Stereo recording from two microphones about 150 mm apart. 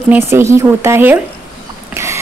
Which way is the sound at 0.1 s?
15° right (ahead or behind).